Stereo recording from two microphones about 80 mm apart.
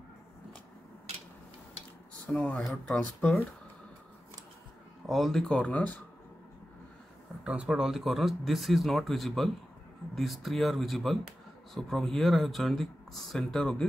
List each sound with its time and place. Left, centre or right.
2.2 s speech: centre
5.0 s speech: centre
5.5 s speech: centre
7.4 s speech: centre